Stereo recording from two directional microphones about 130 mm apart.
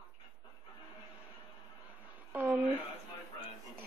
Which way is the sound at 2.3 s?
10° right (ahead or behind).